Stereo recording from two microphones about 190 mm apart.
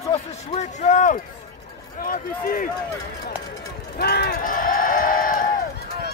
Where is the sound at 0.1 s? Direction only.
40° left (ahead or behind).